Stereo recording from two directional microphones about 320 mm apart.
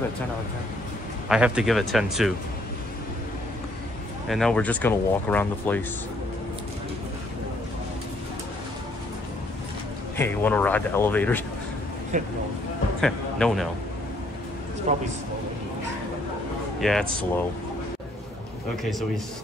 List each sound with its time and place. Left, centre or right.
1.3 s speech: centre
4.3 s speech: centre
10.1 s speech: centre
12.1 s speech: right
13.0 s speech: centre
14.9 s speech: right
16.8 s speech: centre